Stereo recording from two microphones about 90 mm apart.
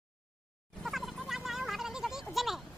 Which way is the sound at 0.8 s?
Centre (ahead or behind).